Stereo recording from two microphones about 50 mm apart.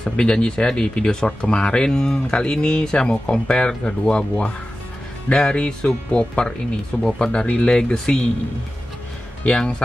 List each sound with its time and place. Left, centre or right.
0.0 s speech: centre
5.3 s speech: centre
9.5 s speech: centre